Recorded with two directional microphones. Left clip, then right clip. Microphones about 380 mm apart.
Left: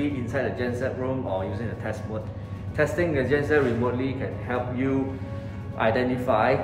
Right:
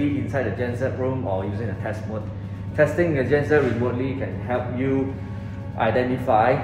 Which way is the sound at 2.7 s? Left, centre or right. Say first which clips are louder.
Right 4 dB; centre.